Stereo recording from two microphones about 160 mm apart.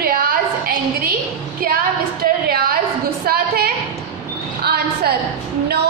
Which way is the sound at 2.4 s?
70° right (ahead or behind).